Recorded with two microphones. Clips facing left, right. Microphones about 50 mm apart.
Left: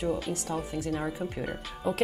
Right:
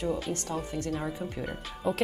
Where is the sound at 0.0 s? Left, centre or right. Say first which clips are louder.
Left 1 dB; centre.